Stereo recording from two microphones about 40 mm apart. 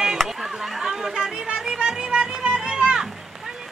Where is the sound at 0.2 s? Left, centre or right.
Centre.